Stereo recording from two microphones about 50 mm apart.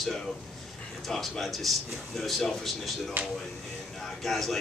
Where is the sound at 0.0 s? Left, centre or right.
Centre.